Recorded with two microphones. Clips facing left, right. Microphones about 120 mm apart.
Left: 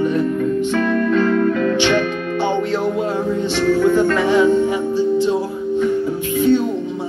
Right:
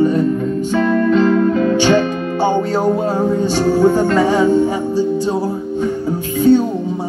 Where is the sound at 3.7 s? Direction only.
35° right (ahead or behind).